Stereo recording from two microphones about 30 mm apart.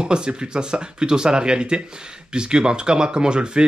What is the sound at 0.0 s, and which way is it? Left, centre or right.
Speech, right.